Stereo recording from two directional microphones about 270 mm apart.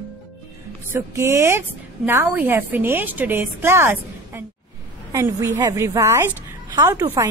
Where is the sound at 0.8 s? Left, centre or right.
Centre.